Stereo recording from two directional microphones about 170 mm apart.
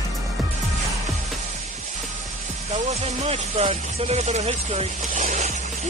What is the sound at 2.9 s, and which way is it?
Speech, 35° right (ahead or behind).